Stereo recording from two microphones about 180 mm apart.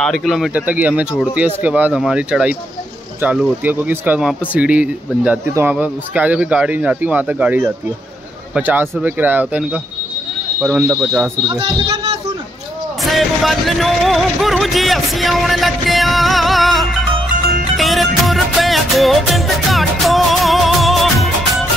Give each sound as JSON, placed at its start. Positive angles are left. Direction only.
{"t": 0.0, "sound": "speech", "side_deg": 0}
{"t": 10.8, "sound": "speech", "side_deg": -10}
{"t": 11.4, "sound": "speech", "side_deg": -20}
{"t": 13.0, "sound": "speech", "side_deg": 0}
{"t": 17.7, "sound": "music", "side_deg": 0}